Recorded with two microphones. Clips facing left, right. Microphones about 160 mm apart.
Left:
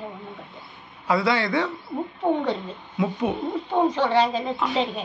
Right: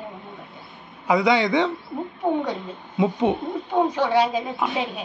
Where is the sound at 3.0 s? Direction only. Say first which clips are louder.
Right 4 dB; 20° right (ahead or behind).